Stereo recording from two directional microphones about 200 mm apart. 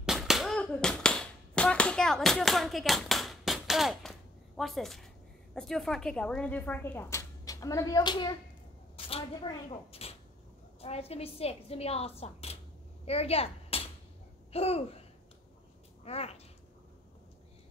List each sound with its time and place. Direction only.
0.0 s a sound: centre (ahead or behind)
5.5 s a woman's voice: centre (ahead or behind); by 13.8 s 30° left (ahead or behind)
14.5 s babbling: 30° left (ahead or behind)
16.0 s speech: 30° left (ahead or behind)